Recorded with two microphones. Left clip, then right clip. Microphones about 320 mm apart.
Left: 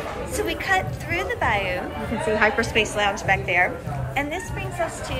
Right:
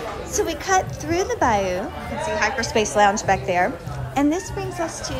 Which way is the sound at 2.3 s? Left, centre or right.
Centre.